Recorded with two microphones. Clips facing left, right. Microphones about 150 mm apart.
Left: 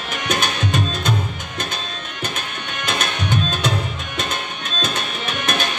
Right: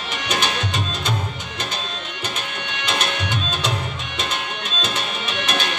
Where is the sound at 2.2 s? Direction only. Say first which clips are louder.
Left 2 dB; 45° left (ahead or behind).